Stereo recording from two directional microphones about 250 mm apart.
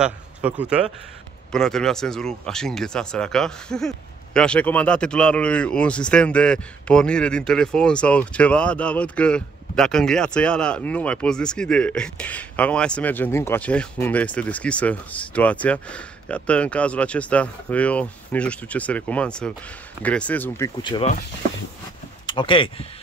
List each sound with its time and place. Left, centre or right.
0.0 s a man's voice: centre
22.2 s speech: centre